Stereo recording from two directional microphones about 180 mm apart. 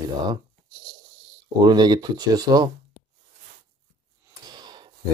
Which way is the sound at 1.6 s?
25° right (ahead or behind).